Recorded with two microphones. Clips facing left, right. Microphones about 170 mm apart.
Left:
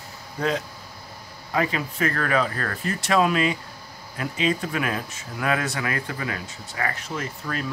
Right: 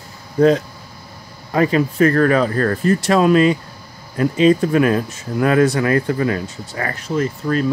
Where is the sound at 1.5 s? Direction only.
40° right (ahead or behind).